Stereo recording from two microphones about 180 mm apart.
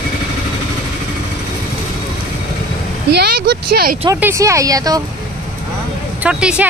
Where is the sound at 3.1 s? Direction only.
60° right (ahead or behind).